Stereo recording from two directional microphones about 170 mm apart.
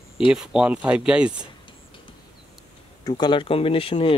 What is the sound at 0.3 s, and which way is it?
Speech, 5° right (ahead or behind).